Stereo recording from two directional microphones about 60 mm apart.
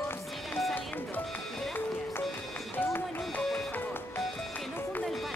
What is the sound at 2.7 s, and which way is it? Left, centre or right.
Run, left.